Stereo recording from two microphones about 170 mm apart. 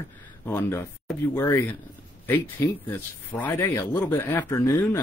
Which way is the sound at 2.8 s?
10° left (ahead or behind).